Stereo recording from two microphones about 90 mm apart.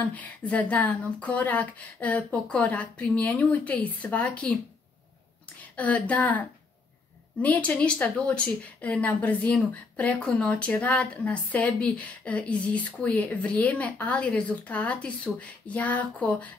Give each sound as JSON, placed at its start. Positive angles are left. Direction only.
{"t": 0.0, "sound": "a woman's voice", "side_deg": 15}
{"t": 5.8, "sound": "a woman's voice", "side_deg": 15}